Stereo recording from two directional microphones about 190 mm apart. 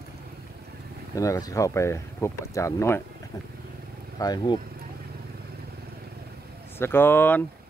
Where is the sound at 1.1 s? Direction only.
15° left (ahead or behind).